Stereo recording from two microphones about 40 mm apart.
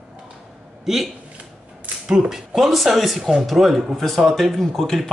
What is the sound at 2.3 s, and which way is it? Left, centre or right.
A man's voice, centre.